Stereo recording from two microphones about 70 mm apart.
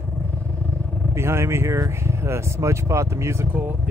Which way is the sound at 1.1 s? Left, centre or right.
Right.